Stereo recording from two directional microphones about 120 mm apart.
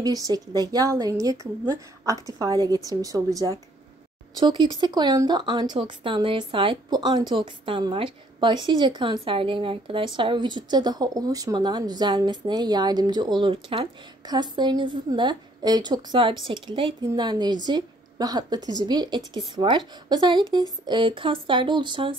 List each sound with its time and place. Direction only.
0.0 s a woman's voice: 30° right (ahead or behind)